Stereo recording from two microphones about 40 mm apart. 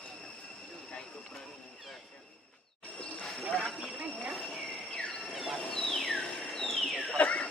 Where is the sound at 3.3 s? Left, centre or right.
Centre.